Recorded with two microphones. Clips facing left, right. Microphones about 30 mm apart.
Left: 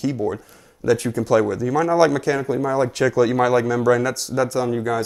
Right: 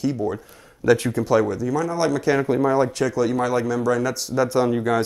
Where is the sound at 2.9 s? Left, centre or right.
Centre.